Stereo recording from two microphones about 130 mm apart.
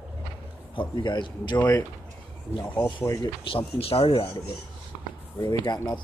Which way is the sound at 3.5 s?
45° left (ahead or behind).